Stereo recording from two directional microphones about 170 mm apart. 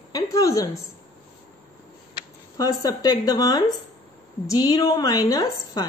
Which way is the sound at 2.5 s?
20° left (ahead or behind).